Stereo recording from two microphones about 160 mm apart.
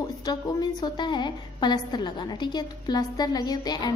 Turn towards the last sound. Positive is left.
turn(degrees=25)  # may be behind; listen again after turning